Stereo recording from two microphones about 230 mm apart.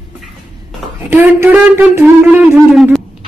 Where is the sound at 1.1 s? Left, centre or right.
Centre.